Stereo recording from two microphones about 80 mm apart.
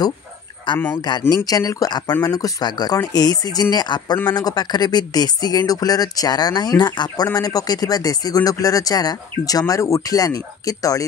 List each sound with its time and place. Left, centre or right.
0.7 s speech: left
1.3 s speech: left
1.9 s speech: left